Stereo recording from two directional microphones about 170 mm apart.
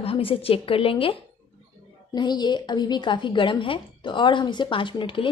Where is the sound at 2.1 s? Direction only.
25° left (ahead or behind).